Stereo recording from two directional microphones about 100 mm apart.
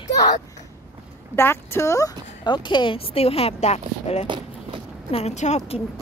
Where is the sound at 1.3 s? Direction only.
25° left (ahead or behind).